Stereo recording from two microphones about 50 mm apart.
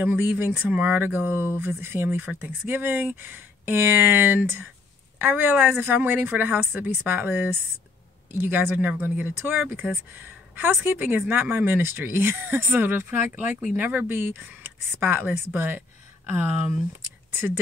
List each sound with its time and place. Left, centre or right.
0.0 s speech: right
0.6 s speech: right
1.0 s speech: right
17.3 s speech: right